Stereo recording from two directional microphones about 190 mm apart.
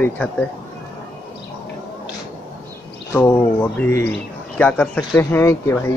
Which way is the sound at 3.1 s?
10° left (ahead or behind).